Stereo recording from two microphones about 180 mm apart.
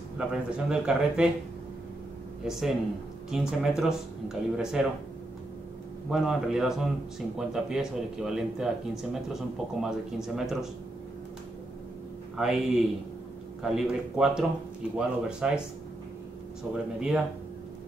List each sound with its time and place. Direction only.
0.2 s speech: 5° right (ahead or behind)
2.4 s speech: centre (ahead or behind)
6.0 s speech: centre (ahead or behind)
12.4 s speech: centre (ahead or behind)